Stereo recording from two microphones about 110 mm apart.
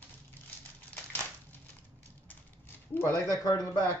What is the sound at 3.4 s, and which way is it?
Speech, 35° left (ahead or behind).